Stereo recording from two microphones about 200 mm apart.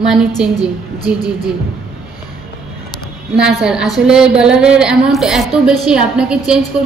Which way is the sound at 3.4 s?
5° right (ahead or behind).